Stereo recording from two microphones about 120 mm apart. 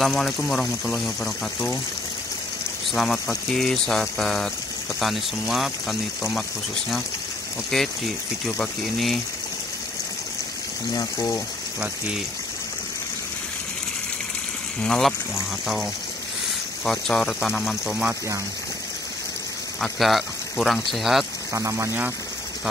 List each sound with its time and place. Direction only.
0.0 s speech: centre (ahead or behind)
2.9 s speech: centre (ahead or behind)
7.7 s speech: centre (ahead or behind)
10.9 s speech: 35° left (ahead or behind)
14.8 s speech: 5° left (ahead or behind)
19.8 s speech: centre (ahead or behind)
21.5 s speech: 25° right (ahead or behind)